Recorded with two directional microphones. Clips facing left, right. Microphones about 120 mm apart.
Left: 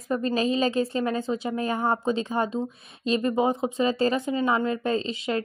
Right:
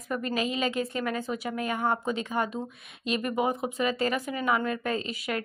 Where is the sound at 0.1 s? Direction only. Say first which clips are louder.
Left 5 dB; 30° left (ahead or behind).